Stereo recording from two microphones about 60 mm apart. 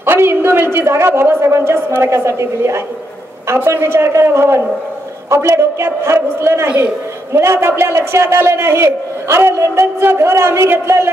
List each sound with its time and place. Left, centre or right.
0.0 s a man's voice: right